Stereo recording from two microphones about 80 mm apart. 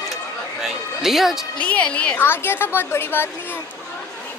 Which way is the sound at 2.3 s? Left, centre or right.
Left.